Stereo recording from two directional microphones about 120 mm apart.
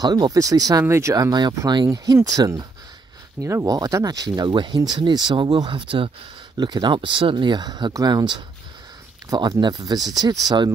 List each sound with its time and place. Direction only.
0.0 s speech: 30° right (ahead or behind)